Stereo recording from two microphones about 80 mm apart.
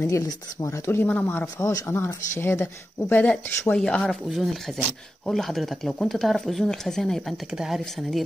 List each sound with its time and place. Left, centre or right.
0.0 s speech: left
1.7 s speech: left
3.0 s speech: left
3.7 s speech: centre
7.5 s speech: centre